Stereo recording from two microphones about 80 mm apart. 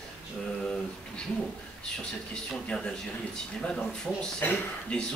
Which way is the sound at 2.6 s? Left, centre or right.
Centre.